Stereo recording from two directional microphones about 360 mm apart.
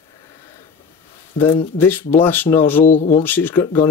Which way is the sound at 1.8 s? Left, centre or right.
Centre.